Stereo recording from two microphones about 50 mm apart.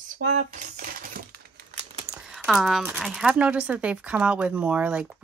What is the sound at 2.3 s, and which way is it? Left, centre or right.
Speech, centre.